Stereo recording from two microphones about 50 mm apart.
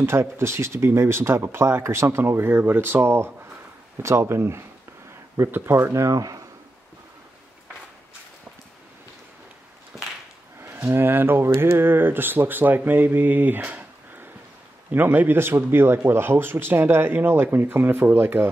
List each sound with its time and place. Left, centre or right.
0.0 s speech: right
5.9 s speech: right
10.6 s speech: right